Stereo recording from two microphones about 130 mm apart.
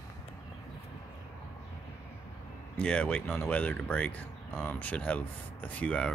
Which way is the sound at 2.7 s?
10° left (ahead or behind).